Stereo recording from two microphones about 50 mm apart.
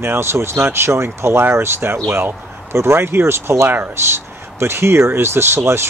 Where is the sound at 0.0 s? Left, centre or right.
Right.